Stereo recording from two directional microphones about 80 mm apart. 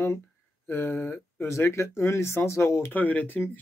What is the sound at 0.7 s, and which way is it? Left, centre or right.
Speech, left.